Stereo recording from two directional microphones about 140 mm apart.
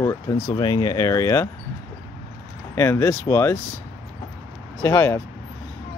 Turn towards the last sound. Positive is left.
turn(degrees=20)  # may be behind; listen again after turning